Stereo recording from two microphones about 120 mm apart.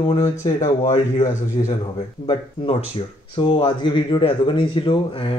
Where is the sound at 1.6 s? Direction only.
45° left (ahead or behind).